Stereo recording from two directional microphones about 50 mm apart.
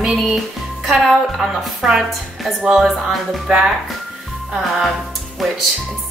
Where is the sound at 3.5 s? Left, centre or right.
Centre.